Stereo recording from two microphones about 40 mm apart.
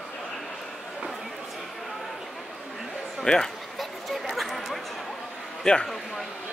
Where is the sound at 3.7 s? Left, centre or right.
Centre.